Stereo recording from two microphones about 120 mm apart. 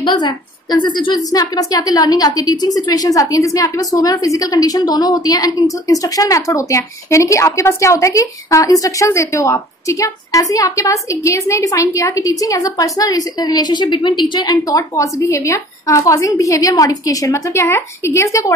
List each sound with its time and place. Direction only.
0.0 s a woman's voice: 40° left (ahead or behind)